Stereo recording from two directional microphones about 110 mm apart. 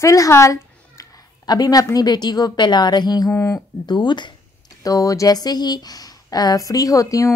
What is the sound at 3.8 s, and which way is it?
Speech, 45° left (ahead or behind).